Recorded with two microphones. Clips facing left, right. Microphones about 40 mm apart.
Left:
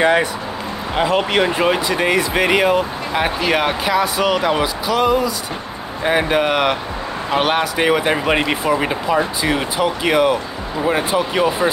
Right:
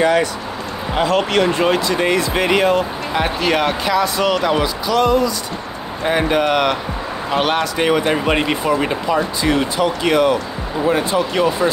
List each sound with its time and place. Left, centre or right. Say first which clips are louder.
0.0 s speech: even; left